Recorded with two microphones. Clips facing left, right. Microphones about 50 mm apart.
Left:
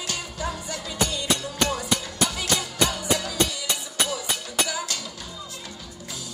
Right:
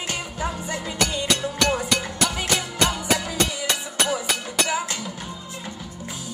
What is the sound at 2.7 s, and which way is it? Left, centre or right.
Music, right.